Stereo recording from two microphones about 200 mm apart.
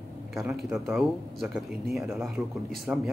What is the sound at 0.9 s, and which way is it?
Speech, centre (ahead or behind).